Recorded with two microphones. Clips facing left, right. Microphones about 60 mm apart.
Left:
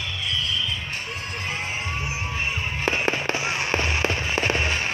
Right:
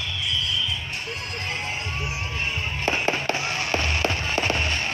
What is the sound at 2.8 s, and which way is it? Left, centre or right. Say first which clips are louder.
Fireworks: even; left.